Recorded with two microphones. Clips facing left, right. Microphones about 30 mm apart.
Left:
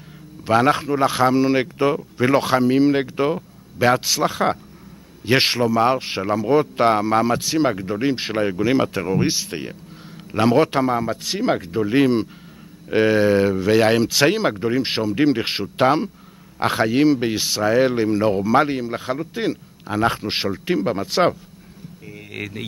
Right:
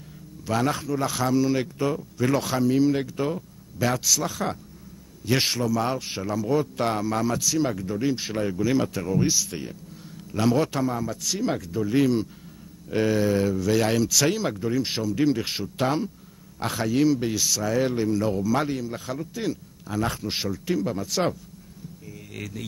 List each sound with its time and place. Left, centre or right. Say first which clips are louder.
0.5 s speech: left 8 dB; left